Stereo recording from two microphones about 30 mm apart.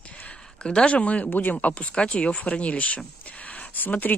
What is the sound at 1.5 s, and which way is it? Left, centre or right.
Speech, left.